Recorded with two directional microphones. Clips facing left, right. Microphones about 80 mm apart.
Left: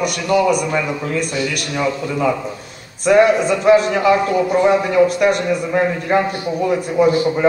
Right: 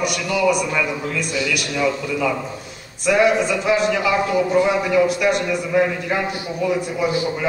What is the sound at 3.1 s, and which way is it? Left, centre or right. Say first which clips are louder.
A man's voice: left 4 dB; left.